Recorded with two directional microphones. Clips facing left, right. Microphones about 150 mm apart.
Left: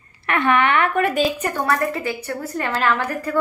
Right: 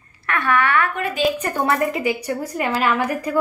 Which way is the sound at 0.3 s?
20° left (ahead or behind).